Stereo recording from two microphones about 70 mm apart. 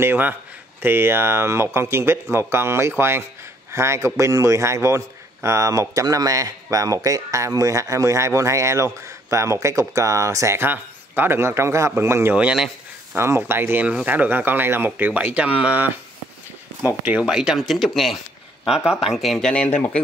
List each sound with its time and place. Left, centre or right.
0.0 s speech: right
10.6 s speech: right
12.4 s speech: centre
13.1 s speech: right
17.2 s speech: centre
19.5 s speech: left